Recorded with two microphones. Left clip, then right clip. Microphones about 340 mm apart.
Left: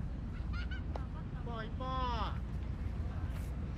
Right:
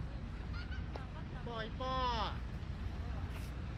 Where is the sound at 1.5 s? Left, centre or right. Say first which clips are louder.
Right 1 dB; right.